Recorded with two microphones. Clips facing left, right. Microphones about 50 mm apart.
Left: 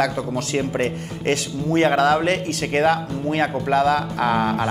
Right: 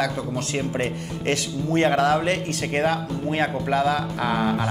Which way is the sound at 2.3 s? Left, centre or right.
Left.